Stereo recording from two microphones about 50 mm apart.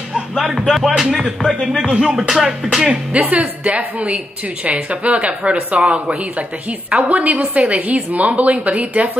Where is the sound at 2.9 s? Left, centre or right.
Right.